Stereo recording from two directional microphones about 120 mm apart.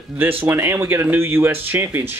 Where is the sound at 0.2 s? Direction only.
15° right (ahead or behind).